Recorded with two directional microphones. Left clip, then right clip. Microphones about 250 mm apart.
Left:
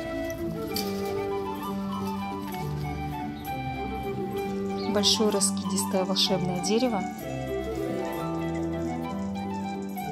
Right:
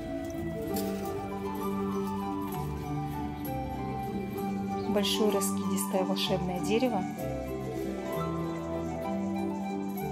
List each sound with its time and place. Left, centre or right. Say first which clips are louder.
4.9 s speech: left 4 dB; left